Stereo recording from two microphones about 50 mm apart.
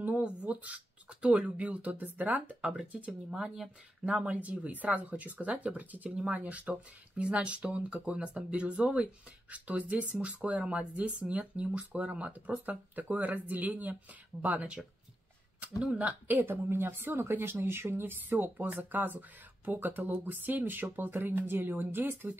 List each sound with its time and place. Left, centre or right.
0.2 s speech: right
3.1 s speech: centre
4.0 s speech: right
16.3 s a woman's voice: right